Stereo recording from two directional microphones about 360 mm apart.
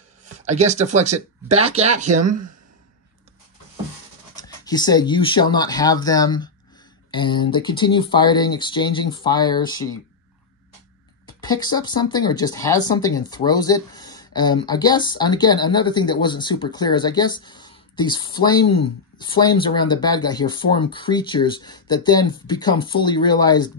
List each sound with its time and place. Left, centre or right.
0.2 s speech: centre
4.4 s speech: centre
11.2 s speech: centre